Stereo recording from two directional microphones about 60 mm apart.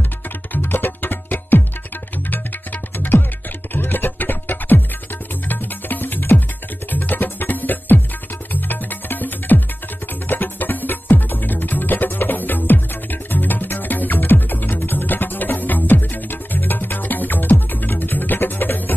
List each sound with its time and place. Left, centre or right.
0.5 s music: left
3.0 s music: left